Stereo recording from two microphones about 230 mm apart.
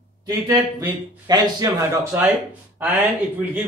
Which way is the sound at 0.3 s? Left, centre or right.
Centre.